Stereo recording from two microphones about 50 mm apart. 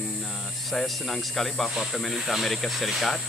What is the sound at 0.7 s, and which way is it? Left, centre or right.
Speech, centre.